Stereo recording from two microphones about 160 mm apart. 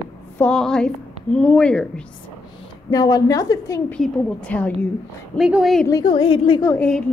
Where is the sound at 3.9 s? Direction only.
5° left (ahead or behind).